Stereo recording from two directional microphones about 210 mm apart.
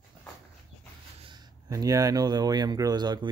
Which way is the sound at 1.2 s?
20° right (ahead or behind).